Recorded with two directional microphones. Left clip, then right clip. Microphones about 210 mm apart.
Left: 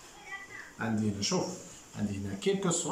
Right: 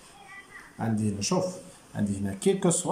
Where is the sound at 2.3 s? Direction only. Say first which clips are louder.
Right 5 dB; 30° right (ahead or behind).